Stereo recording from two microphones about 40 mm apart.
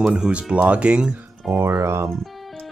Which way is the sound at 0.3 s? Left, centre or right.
Right.